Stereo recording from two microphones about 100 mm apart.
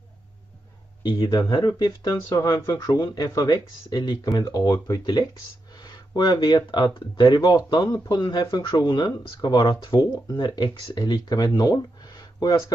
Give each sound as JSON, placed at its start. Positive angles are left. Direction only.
{"t": 1.0, "sound": "speech", "side_deg": 45}